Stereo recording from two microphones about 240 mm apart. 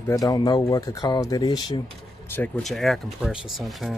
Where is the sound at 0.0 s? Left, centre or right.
Centre.